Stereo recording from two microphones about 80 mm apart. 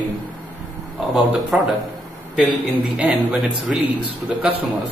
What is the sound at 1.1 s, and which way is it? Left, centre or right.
Speech, centre.